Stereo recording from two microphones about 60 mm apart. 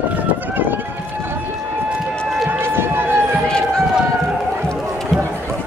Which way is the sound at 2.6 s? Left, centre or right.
Right.